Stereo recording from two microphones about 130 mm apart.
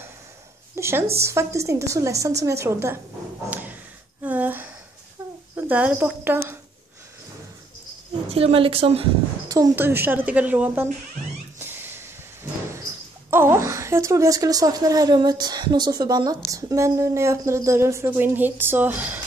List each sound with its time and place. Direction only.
0.7 s speech: 20° right (ahead or behind)
4.2 s a sound: 10° right (ahead or behind)
5.6 s a woman's voice: 10° right (ahead or behind)
8.3 s a woman's voice: 50° right (ahead or behind)
9.8 s a woman's voice: 15° right (ahead or behind)
11.5 s a sound: 15° right (ahead or behind)
13.3 s speech: 20° right (ahead or behind)